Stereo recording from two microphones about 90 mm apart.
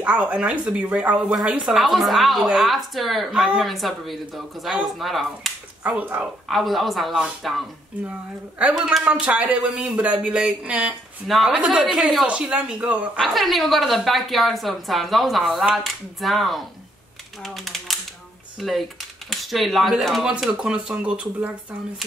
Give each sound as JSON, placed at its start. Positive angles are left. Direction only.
{"t": 0.0, "sound": "speech", "side_deg": -15}
{"t": 5.9, "sound": "speech", "side_deg": -20}
{"t": 6.5, "sound": "speech", "side_deg": 0}
{"t": 8.7, "sound": "speech", "side_deg": -5}
{"t": 11.2, "sound": "speech", "side_deg": 0}
{"t": 12.3, "sound": "speech", "side_deg": -15}
{"t": 13.3, "sound": "speech", "side_deg": 0}